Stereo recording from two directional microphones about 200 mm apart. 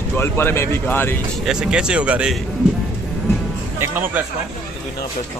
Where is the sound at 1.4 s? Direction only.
5° right (ahead or behind).